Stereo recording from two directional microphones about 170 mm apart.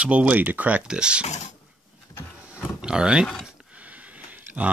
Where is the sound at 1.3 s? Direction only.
40° left (ahead or behind).